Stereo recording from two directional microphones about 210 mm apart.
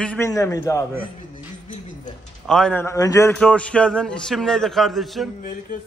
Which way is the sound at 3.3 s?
5° left (ahead or behind).